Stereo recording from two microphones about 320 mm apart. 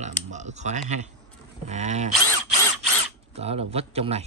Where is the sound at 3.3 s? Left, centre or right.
Centre.